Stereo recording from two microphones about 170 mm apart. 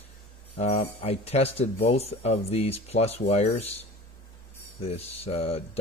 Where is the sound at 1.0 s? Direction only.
35° left (ahead or behind).